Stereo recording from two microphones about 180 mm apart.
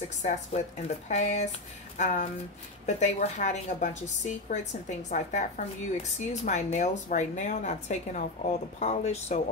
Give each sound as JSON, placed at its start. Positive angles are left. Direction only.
{"t": 0.2, "sound": "speech", "side_deg": 40}